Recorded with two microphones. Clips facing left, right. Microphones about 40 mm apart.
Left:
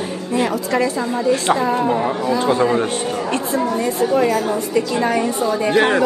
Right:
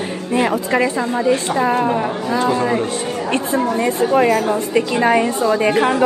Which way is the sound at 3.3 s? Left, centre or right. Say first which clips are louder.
Right 3 dB; right.